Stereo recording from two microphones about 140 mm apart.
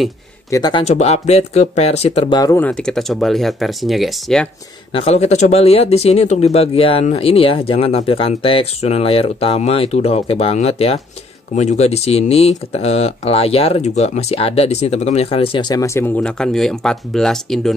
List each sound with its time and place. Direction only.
0.5 s speech: 30° left (ahead or behind)
0.8 s speech: 50° left (ahead or behind)
2.5 s speech: 10° left (ahead or behind)
4.9 s speech: 50° left (ahead or behind); by 16.1 s 20° left (ahead or behind)
16.2 s speech: 5° left (ahead or behind)